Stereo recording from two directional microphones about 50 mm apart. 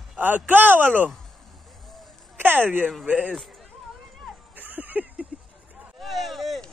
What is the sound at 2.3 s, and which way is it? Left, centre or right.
Speech, right.